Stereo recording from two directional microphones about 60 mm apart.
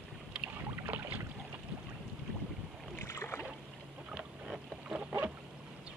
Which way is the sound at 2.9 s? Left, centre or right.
Left.